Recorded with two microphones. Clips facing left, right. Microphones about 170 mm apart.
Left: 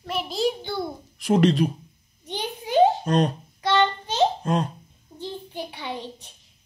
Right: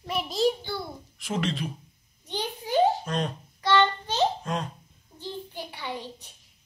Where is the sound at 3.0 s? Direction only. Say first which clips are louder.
Left 8 dB; 40° left (ahead or behind).